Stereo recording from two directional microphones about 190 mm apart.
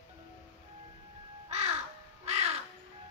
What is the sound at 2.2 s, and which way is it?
Music, 35° right (ahead or behind).